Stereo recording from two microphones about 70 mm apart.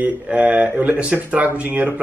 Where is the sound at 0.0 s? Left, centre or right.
Centre.